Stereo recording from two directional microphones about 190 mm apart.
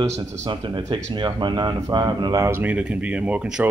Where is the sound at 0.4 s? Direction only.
25° right (ahead or behind).